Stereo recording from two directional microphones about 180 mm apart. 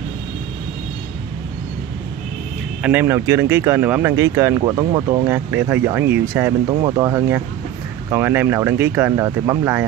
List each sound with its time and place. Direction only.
2.8 s speech: 10° right (ahead or behind)